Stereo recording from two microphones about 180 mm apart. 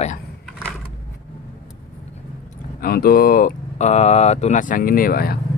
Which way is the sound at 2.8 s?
55° left (ahead or behind).